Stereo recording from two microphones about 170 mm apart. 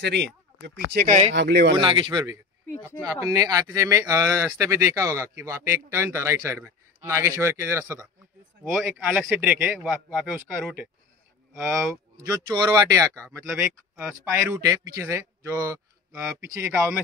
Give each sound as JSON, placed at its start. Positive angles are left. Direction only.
{"t": 0.0, "sound": "speech", "side_deg": -90}
{"t": 1.3, "sound": "speech", "side_deg": -85}
{"t": 1.8, "sound": "speech", "side_deg": -30}
{"t": 8.7, "sound": "a man's voice", "side_deg": -5}
{"t": 11.7, "sound": "speech", "side_deg": -20}